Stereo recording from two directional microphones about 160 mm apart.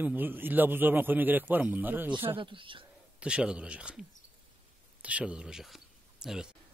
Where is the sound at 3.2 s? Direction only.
5° right (ahead or behind).